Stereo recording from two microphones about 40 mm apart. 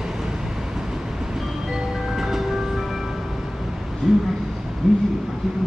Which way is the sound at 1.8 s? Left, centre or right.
Centre.